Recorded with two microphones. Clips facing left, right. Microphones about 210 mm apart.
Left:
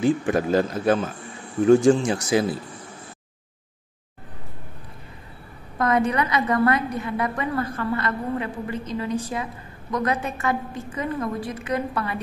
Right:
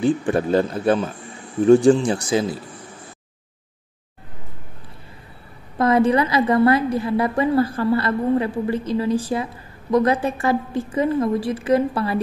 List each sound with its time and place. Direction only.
0.0 s a woman's voice: 30° right (ahead or behind)
5.8 s a woman's voice: 30° right (ahead or behind)